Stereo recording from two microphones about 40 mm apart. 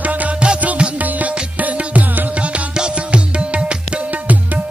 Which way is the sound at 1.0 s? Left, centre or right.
Right.